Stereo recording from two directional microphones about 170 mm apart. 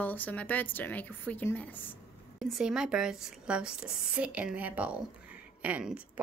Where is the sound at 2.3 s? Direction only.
Centre (ahead or behind).